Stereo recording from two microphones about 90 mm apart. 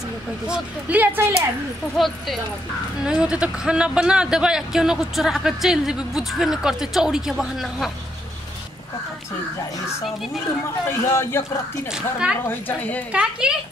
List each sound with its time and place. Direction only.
0.5 s speech: 15° right (ahead or behind)
2.0 s speech: centre (ahead or behind)
3.0 s speech: 10° right (ahead or behind)
10.9 s a man's voice: 30° left (ahead or behind)
11.9 s speech: 10° right (ahead or behind)
12.4 s a man's voice: 20° left (ahead or behind)
13.1 s speech: 10° right (ahead or behind)